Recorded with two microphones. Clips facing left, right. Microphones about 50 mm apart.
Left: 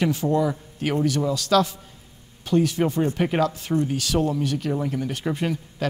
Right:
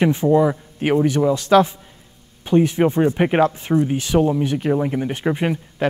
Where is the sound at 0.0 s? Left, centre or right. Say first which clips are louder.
Right 6 dB; right.